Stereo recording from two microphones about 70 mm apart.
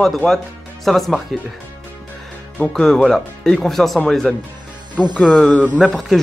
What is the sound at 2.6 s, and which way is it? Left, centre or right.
Speech, centre.